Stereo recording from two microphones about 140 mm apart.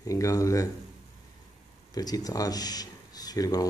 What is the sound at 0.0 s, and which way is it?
Speech, 25° left (ahead or behind).